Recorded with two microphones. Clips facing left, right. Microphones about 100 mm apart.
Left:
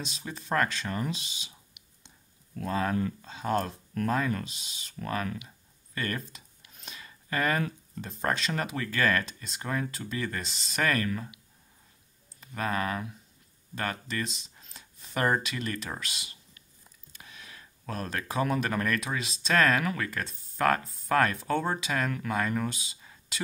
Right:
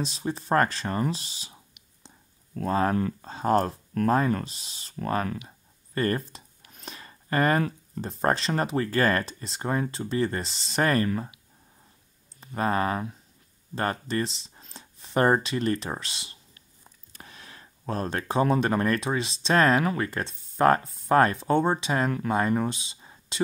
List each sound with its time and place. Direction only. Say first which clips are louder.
0.0 s speech: right 9 dB; 35° right (ahead or behind)
12.4 s speech: right 5 dB; 30° right (ahead or behind)
14.5 s a sound: right 5 dB; 30° right (ahead or behind)
17.1 s speech: right 2 dB; 40° right (ahead or behind)